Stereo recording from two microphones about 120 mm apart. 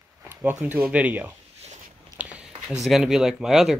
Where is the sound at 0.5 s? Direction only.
15° right (ahead or behind).